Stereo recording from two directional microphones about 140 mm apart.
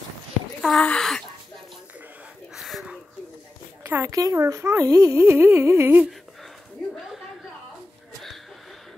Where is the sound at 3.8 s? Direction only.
20° right (ahead or behind).